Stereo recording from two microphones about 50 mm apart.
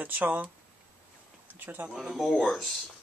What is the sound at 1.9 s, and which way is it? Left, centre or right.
Speech, centre.